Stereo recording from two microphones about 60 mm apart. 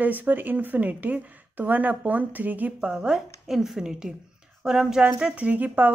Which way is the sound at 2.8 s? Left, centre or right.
Centre.